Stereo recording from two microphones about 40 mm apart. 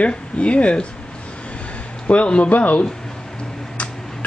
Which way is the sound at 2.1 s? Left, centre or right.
Left.